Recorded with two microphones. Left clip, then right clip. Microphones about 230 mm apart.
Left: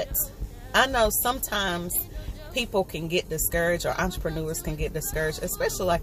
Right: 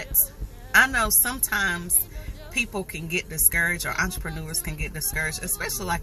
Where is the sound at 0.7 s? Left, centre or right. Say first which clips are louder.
Right 2 dB; right.